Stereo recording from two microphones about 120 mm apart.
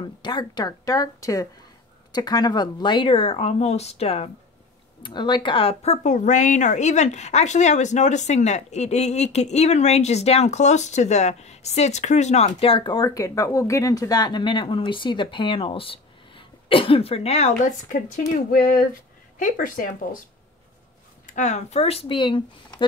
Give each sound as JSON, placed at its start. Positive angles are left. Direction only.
{"t": 0.0, "sound": "speech", "side_deg": 40}
{"t": 5.0, "sound": "speech", "side_deg": 40}
{"t": 19.3, "sound": "speech", "side_deg": 90}
{"t": 21.3, "sound": "speech", "side_deg": 85}